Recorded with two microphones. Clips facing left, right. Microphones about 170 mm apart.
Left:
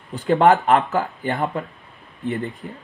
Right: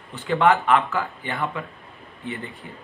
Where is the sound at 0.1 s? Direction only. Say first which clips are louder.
Left 4 dB; 40° left (ahead or behind).